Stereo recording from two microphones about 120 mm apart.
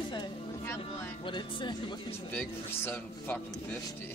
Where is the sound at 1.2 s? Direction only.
40° left (ahead or behind).